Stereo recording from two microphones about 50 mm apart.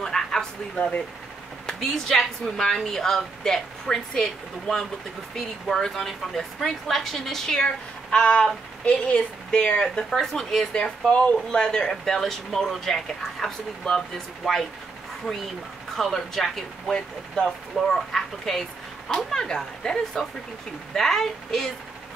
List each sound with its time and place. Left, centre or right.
0.0 s a sound: centre
0.7 s speech: left
1.7 s a woman's voice: centre
8.1 s speech: left
10.0 s a woman's voice: centre
10.7 s a woman's voice: left; by 16.9 s centre
16.9 s a woman's voice: centre
17.7 s a woman's voice: centre